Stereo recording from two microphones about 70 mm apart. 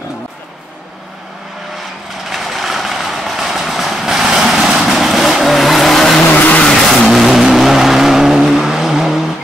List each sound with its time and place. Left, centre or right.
2.2 s vehicle: centre
6.2 s vehicle: left
6.7 s vehicle: centre